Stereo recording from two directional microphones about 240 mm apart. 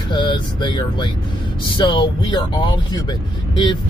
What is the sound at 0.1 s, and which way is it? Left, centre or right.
Speech, centre.